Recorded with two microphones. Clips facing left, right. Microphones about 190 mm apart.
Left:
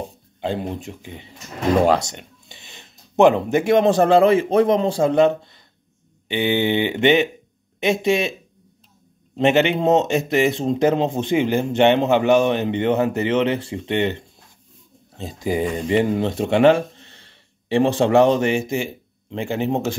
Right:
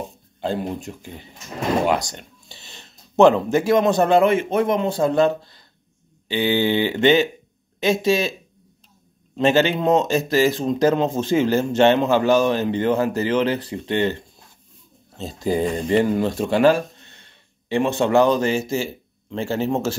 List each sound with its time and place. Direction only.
0.4 s speech: 20° left (ahead or behind)
9.4 s speech: 20° left (ahead or behind)